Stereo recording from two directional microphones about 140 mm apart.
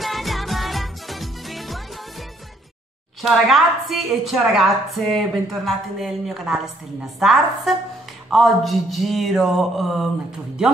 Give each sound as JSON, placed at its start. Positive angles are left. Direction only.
{"t": 0.0, "sound": "music", "side_deg": 0}
{"t": 3.2, "sound": "a woman's voice", "side_deg": 0}